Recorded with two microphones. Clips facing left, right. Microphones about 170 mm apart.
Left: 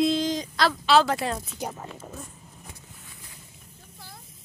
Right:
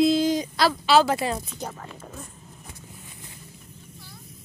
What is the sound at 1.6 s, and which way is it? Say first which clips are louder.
Speech: left 1 dB; 10° left (ahead or behind).